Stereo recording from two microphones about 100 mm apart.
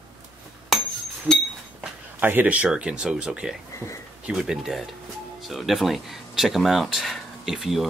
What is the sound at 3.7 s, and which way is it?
Speech, 30° left (ahead or behind).